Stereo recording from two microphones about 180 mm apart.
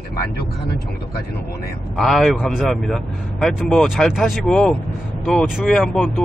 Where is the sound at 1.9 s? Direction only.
Centre (ahead or behind).